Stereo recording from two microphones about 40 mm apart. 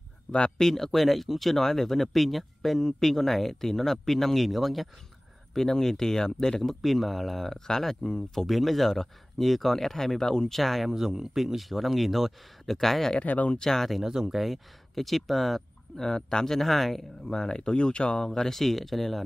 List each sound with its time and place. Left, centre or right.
0.6 s speech: centre
2.8 s speech: centre
7.5 s speech: centre
8.4 s speech: centre
10.6 s speech: centre
13.2 s speech: left
13.6 s speech: centre
14.0 s speech: centre
14.3 s speech: centre
16.0 s speech: centre